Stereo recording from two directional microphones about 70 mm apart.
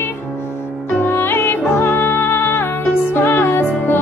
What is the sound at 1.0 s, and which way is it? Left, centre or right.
Music, left.